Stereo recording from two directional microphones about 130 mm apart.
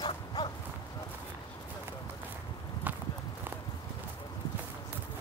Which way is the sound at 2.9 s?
15° right (ahead or behind).